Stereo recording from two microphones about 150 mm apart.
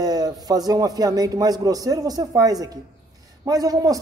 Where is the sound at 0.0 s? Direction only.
25° right (ahead or behind).